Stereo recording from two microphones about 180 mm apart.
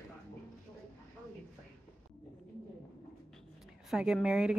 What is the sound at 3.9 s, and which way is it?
Speech, 5° right (ahead or behind).